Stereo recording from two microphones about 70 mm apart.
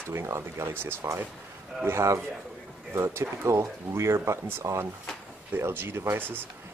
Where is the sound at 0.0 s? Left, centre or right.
Right.